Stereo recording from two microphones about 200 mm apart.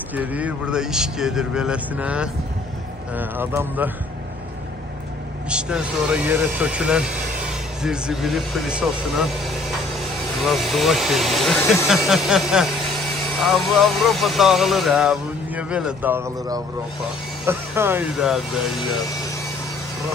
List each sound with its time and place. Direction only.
0.1 s speech: 10° right (ahead or behind)
5.5 s speech: 5° right (ahead or behind)
13.7 s speech: centre (ahead or behind)